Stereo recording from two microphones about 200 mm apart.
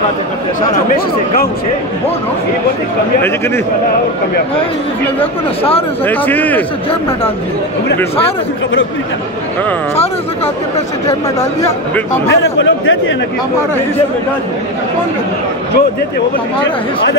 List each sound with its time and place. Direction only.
0.9 s speech: 45° left (ahead or behind)
3.2 s speech: 10° left (ahead or behind)
5.6 s speech: 30° left (ahead or behind)
6.0 s speech: 10° left (ahead or behind)
12.3 s speech: 70° left (ahead or behind)